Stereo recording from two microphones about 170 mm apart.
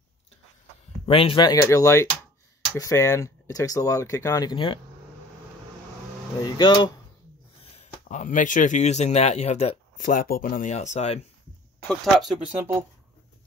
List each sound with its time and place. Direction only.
1.0 s speech: 35° left (ahead or behind)
6.4 s speech: 25° left (ahead or behind)
7.6 s speech: 40° left (ahead or behind)
11.9 s speech: centre (ahead or behind)